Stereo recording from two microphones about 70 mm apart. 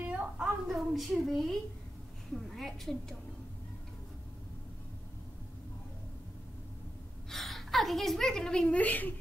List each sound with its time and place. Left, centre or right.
0.0 s a sound: right
0.4 s a woman's voice: centre
7.2 s a woman's voice: centre; by 9.1 s left